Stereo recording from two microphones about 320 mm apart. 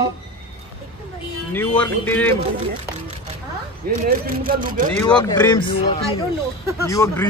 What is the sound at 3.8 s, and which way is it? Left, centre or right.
Speech, right.